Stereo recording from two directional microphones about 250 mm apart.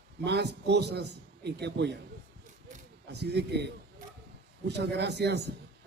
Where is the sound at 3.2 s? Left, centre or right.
Right.